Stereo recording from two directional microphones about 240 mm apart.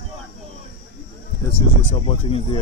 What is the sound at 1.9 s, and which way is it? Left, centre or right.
Speech, left.